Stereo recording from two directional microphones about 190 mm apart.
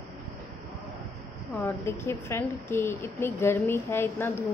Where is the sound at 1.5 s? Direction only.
15° left (ahead or behind).